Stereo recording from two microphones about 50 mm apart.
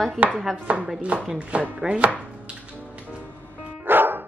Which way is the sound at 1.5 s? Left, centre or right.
Centre.